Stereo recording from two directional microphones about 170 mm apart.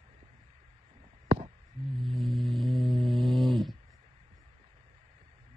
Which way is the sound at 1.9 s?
Centre (ahead or behind).